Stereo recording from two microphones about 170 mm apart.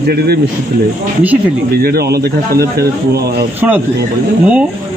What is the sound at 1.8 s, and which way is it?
Speech, 65° right (ahead or behind).